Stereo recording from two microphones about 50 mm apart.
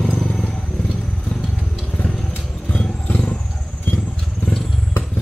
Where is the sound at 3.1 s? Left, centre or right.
Left.